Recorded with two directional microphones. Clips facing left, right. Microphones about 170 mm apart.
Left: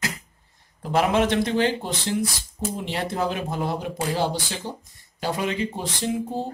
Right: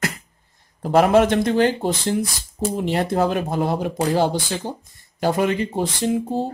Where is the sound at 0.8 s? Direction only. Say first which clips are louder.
Right 6 dB; 45° right (ahead or behind).